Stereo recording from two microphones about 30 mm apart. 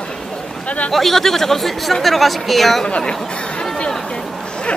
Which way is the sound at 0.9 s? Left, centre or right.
Centre.